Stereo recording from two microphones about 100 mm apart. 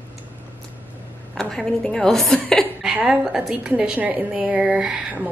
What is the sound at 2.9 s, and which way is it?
A woman's voice, 5° right (ahead or behind).